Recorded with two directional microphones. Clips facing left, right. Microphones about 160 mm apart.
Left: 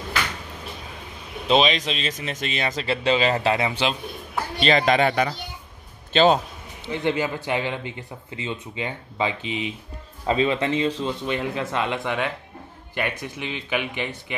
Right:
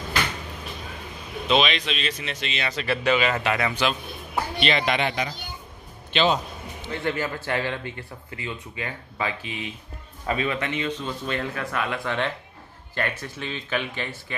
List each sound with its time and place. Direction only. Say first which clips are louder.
1.5 s speech: left 3 dB; 35° left (ahead or behind)
2.8 s speech: left 1 dB; 25° left (ahead or behind)
4.6 s a man's voice: left 6 dB; 40° left (ahead or behind)
6.9 s speech: left 4 dB; 15° left (ahead or behind)
11.2 s speech: left 3 dB; 20° left (ahead or behind)